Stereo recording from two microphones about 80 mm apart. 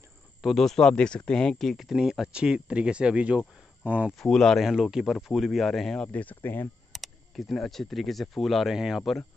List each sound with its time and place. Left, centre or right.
0.4 s speech: centre
4.2 s speech: centre
4.6 s speech: centre
6.1 s speech: left
6.9 s speech: centre